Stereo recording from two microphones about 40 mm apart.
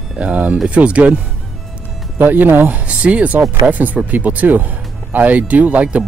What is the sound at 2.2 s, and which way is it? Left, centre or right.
Speech, right.